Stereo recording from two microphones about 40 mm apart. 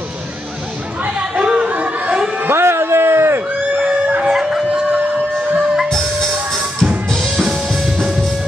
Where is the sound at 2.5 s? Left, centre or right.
Right.